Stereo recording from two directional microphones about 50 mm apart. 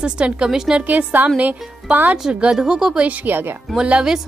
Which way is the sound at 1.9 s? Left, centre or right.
Centre.